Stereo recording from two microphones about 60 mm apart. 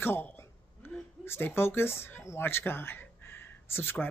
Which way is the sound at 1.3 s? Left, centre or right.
Left.